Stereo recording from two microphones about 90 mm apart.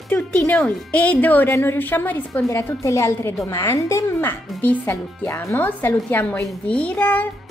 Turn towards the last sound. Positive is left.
turn(degrees=15)  # may be behind; listen again after turning